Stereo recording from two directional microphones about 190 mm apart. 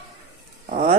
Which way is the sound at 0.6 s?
35° right (ahead or behind).